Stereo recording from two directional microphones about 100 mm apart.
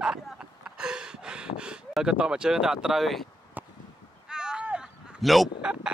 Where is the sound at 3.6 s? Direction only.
15° right (ahead or behind).